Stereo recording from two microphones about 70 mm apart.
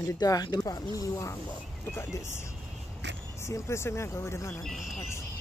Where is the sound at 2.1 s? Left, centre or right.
Left.